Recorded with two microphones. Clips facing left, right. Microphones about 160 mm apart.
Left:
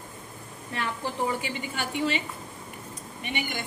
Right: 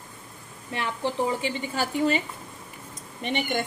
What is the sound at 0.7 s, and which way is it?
A woman's voice, 25° right (ahead or behind).